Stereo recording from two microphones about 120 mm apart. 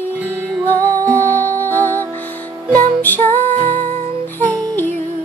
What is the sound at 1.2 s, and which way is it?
Music, 15° left (ahead or behind).